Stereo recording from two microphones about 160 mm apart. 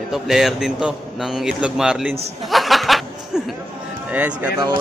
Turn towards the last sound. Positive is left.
turn(degrees=-10)  # may be behind; listen again after turning